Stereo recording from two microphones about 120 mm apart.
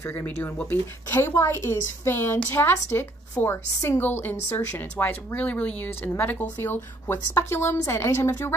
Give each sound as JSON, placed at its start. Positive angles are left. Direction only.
{"t": 0.0, "sound": "a woman's voice", "side_deg": 20}